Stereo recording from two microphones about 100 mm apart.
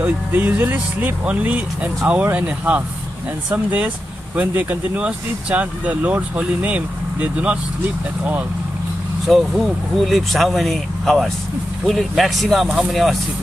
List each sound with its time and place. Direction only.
0.0 s speech: 15° right (ahead or behind)
9.3 s speech: centre (ahead or behind)